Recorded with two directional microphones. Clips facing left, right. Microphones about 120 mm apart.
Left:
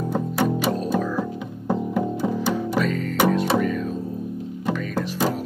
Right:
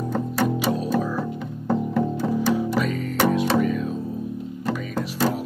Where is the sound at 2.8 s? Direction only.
10° right (ahead or behind).